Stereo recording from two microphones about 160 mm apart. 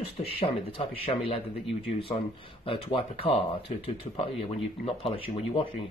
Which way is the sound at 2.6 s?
35° left (ahead or behind).